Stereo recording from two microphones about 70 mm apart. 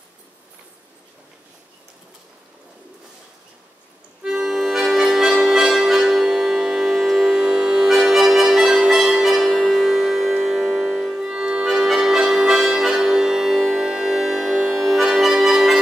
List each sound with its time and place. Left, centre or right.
4.2 s accordion: centre